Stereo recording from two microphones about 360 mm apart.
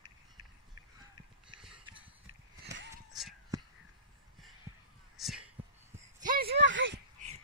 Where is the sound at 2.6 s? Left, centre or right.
Right.